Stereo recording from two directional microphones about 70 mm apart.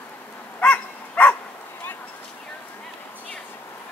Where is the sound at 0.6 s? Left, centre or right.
Centre.